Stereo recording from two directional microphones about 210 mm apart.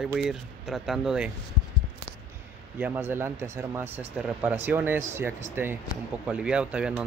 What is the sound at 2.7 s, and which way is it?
Speech, 10° right (ahead or behind).